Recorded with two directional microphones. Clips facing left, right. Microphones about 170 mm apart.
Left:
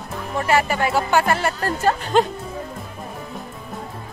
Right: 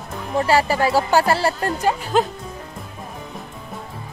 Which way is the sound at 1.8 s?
5° right (ahead or behind).